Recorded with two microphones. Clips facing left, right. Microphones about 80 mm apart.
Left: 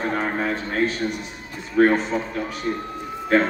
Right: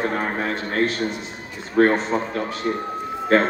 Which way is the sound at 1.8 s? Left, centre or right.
Right.